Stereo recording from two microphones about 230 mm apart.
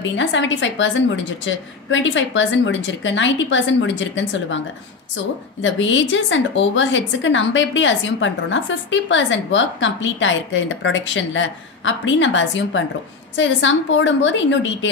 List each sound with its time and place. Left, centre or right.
0.1 s a woman's voice: left